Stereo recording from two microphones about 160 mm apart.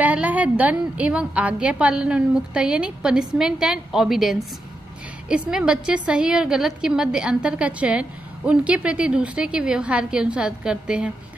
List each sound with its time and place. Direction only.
0.0 s a woman's voice: 10° right (ahead or behind)